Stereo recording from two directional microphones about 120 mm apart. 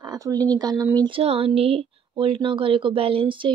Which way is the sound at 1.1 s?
55° right (ahead or behind).